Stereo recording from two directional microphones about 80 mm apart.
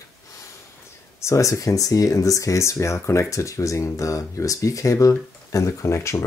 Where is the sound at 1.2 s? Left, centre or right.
Left.